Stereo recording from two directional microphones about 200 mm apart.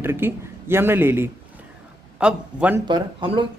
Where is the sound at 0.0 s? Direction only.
10° right (ahead or behind).